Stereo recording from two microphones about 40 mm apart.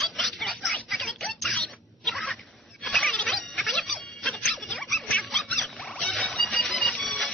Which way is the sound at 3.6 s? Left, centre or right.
Centre.